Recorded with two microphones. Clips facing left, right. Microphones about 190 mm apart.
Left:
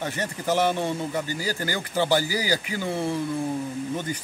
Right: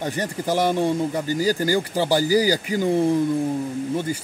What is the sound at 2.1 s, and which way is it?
Speech, 40° right (ahead or behind).